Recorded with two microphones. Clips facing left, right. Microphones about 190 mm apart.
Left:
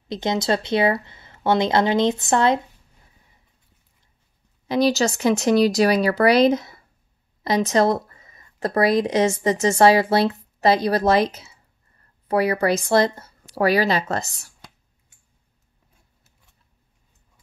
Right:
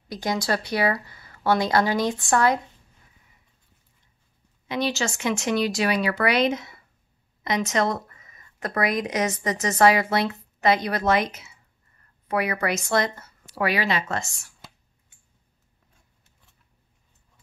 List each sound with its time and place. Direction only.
0.1 s a woman's voice: 25° left (ahead or behind)
4.6 s speech: 35° left (ahead or behind)